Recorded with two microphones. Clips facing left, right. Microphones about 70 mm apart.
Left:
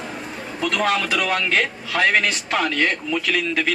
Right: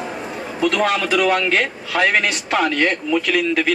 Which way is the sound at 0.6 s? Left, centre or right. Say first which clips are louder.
Right 3 dB; centre.